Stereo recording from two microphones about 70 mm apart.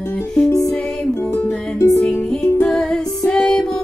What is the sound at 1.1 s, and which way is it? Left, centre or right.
Music, left.